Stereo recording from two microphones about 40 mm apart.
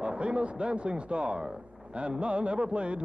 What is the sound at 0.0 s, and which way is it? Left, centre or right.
Speech, right.